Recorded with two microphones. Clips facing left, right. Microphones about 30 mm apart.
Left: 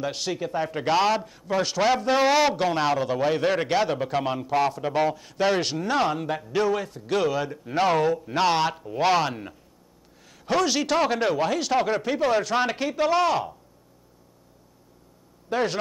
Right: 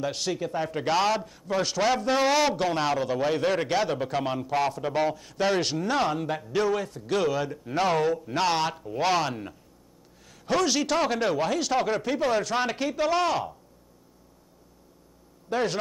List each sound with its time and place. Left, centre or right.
0.0 s a man's voice: centre
15.5 s a man's voice: centre